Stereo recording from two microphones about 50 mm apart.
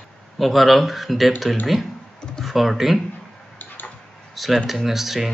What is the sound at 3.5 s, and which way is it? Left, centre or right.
Tick-tock, left.